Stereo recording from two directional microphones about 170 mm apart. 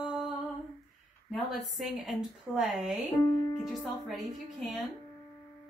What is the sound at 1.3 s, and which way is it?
A woman's voice, centre (ahead or behind).